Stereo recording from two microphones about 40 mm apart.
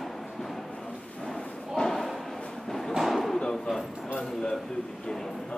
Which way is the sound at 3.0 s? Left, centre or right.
Centre.